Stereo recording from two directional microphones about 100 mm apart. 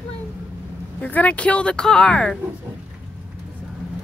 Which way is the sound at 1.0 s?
15° left (ahead or behind).